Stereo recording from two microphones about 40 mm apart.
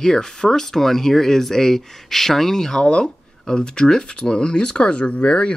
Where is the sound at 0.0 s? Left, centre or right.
Centre.